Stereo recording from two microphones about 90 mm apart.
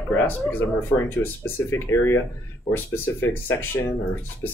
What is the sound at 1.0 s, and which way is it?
Speech, 25° left (ahead or behind).